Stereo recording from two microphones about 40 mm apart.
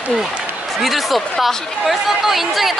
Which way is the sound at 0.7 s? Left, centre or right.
Centre.